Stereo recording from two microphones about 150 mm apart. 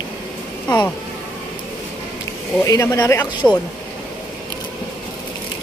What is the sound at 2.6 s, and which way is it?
Speech, 20° left (ahead or behind).